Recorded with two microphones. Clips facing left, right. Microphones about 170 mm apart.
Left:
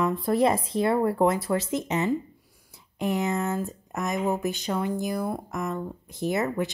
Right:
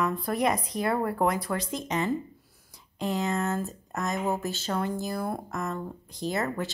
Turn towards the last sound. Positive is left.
turn(degrees=20)  # may be behind; listen again after turning